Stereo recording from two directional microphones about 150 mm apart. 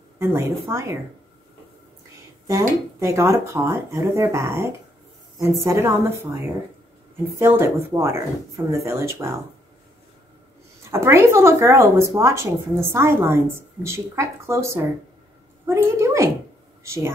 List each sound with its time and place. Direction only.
0.2 s speech: 15° right (ahead or behind)
2.4 s speech: 20° right (ahead or behind)
7.3 s speech: 15° right (ahead or behind)
10.9 s speech: 20° right (ahead or behind)